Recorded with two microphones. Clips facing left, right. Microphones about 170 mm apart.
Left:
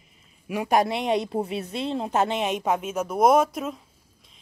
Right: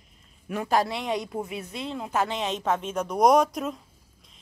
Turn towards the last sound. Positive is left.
turn(degrees=0)  # may be behind; listen again after turning